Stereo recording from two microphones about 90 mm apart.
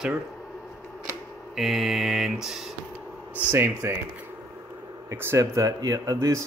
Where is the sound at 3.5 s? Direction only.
25° right (ahead or behind).